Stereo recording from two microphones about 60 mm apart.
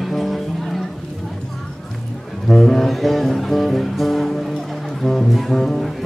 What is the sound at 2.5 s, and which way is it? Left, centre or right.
Music, centre.